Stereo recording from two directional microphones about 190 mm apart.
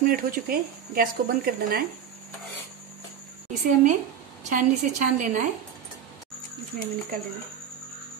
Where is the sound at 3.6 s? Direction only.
40° right (ahead or behind).